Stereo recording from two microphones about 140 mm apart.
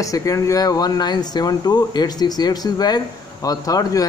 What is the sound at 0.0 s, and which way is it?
A man's voice, 25° left (ahead or behind).